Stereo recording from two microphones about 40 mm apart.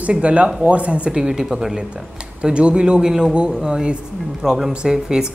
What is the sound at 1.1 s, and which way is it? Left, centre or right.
A man's voice, right.